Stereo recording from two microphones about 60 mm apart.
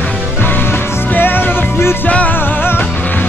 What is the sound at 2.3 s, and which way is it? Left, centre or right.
Music, left.